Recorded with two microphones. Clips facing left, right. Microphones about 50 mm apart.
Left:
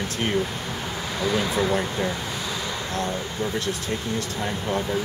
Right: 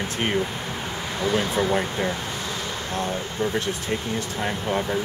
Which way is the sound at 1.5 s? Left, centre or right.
Centre.